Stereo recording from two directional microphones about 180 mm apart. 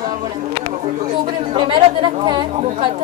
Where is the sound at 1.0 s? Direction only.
30° right (ahead or behind).